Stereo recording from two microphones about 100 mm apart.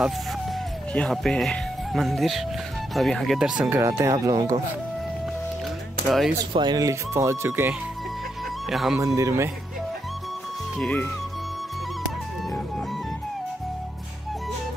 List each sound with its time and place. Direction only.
1.1 s speech: 5° left (ahead or behind)
3.7 s speech: 30° right (ahead or behind)
6.0 s speech: 5° right (ahead or behind)
6.5 s speech: 45° right (ahead or behind)
6.9 s speech: 30° right (ahead or behind)
8.6 s speech: centre (ahead or behind)
9.0 s speech: 30° right (ahead or behind)
10.8 s speech: 15° left (ahead or behind)